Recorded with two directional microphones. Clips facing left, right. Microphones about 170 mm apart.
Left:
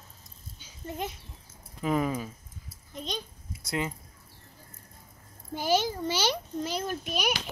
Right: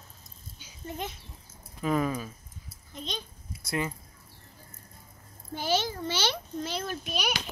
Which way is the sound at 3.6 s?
20° left (ahead or behind).